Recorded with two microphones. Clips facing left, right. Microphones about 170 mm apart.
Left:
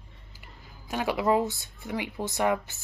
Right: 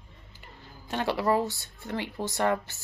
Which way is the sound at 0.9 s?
10° left (ahead or behind).